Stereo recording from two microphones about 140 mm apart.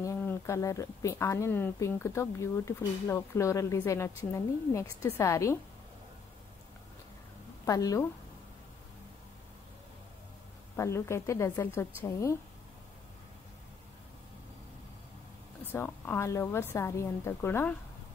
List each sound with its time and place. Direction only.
0.0 s speech: 15° left (ahead or behind)
7.6 s speech: 25° left (ahead or behind)
10.8 s speech: 20° left (ahead or behind)
15.7 s a woman's voice: 15° left (ahead or behind)